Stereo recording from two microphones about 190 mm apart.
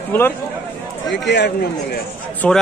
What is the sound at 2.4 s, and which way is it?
Speech, 5° left (ahead or behind).